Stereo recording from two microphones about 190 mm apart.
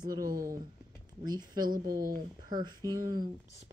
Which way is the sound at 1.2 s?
20° right (ahead or behind).